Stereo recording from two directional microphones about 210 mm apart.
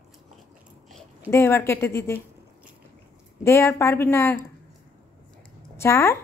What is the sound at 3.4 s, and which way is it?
A woman's voice, 10° left (ahead or behind).